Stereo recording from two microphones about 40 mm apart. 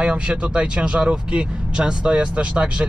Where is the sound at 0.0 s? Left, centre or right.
Right.